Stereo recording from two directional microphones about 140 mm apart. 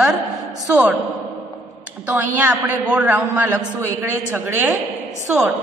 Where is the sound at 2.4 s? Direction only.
10° right (ahead or behind).